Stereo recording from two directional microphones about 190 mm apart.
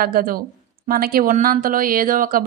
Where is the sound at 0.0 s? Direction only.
50° right (ahead or behind).